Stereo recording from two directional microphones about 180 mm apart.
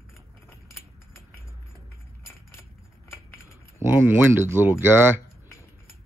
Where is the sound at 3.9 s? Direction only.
10° right (ahead or behind).